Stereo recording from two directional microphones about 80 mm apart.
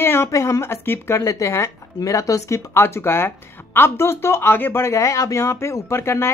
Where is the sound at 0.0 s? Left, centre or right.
Left.